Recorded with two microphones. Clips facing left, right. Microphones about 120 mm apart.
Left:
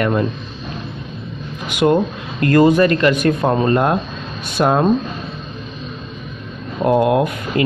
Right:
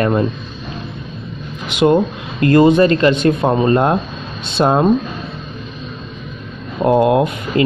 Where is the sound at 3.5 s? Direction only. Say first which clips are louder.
Right 2 dB; 15° right (ahead or behind).